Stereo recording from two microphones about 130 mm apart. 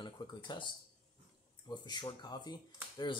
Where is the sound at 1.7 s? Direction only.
35° left (ahead or behind).